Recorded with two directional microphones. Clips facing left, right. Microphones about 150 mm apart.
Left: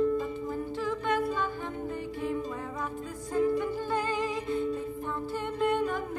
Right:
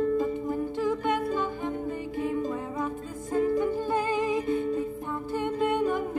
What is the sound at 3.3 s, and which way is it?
Music, 20° right (ahead or behind).